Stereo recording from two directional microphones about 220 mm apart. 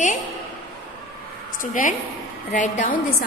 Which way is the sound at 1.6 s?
35° left (ahead or behind).